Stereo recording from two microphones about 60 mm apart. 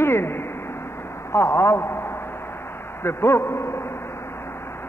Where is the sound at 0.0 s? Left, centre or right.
Left.